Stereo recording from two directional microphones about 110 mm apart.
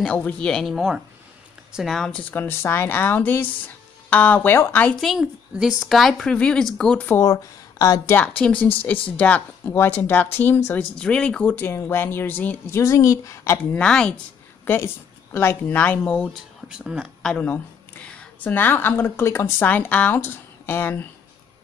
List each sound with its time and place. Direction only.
0.0 s a woman's voice: 10° left (ahead or behind)
2.4 s speech: 20° left (ahead or behind)
5.0 s a woman's voice: 5° right (ahead or behind)
7.1 s a woman's voice: 25° left (ahead or behind)
8.2 s speech: 15° left (ahead or behind)
12.8 s speech: 30° left (ahead or behind)
13.7 s speech: 10° left (ahead or behind)
16.6 s speech: 5° right (ahead or behind)
17.2 s a woman's voice: 5° left (ahead or behind)